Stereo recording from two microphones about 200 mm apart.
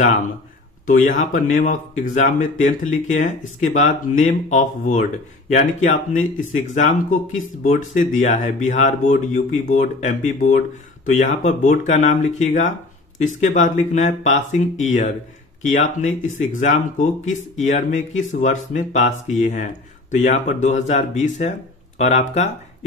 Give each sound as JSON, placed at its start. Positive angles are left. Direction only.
{"t": 0.8, "sound": "speech", "side_deg": 40}